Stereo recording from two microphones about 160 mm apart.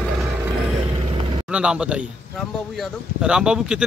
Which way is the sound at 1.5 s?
5° right (ahead or behind).